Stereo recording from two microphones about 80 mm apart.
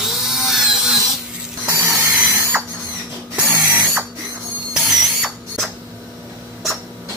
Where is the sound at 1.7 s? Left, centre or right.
Right.